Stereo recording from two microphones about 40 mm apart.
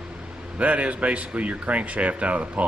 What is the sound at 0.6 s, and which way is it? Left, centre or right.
Speech, right.